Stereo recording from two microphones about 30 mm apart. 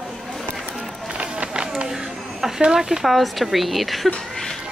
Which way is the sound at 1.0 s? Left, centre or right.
Right.